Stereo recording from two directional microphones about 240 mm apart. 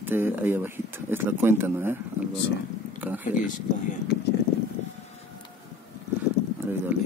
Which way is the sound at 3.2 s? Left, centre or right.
Left.